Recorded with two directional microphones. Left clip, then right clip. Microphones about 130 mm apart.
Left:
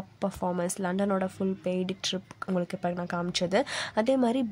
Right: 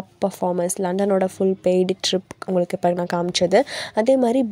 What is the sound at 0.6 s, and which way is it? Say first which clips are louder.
A woman's voice: right 8 dB; 30° right (ahead or behind).